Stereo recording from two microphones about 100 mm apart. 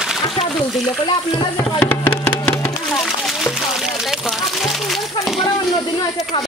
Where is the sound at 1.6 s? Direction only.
20° left (ahead or behind).